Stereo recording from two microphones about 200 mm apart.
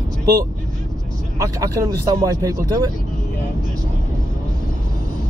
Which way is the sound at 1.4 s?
15° right (ahead or behind).